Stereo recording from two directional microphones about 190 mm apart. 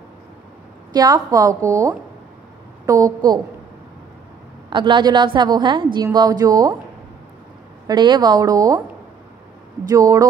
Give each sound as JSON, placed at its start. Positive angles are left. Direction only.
{"t": 0.9, "sound": "a woman's voice", "side_deg": -20}
{"t": 4.6, "sound": "a woman's voice", "side_deg": -25}
{"t": 7.8, "sound": "a woman's voice", "side_deg": -20}
{"t": 9.8, "sound": "a woman's voice", "side_deg": -15}